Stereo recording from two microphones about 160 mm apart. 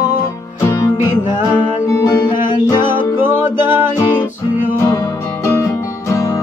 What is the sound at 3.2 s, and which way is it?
Music, 15° right (ahead or behind).